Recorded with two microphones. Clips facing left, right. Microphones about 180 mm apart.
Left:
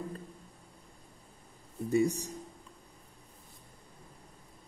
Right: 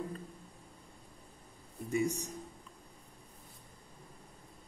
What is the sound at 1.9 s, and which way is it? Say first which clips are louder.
Speech: left 5 dB; 35° left (ahead or behind).